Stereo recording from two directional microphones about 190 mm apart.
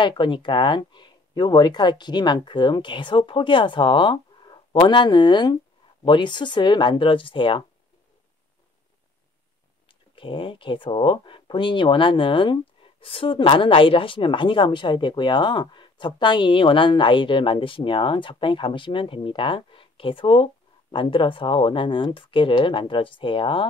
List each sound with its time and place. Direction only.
0.0 s speech: 25° left (ahead or behind)
9.8 s speech: 25° left (ahead or behind)